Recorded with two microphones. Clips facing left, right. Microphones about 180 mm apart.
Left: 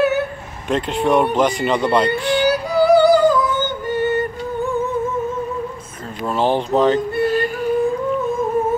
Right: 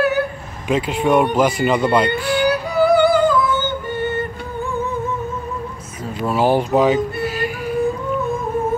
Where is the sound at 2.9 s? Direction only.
35° left (ahead or behind).